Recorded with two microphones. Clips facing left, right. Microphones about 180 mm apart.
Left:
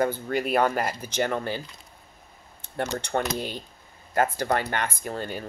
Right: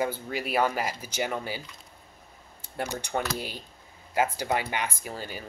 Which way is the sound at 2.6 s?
10° right (ahead or behind).